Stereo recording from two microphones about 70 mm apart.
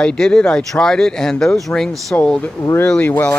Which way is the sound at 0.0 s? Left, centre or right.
Centre.